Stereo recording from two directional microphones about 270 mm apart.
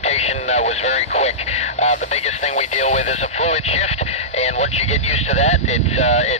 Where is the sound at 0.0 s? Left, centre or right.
Left.